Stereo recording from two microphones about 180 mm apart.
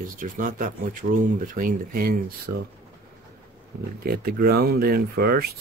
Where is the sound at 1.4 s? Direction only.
50° right (ahead or behind).